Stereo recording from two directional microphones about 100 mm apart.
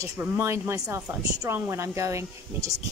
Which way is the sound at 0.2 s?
25° right (ahead or behind).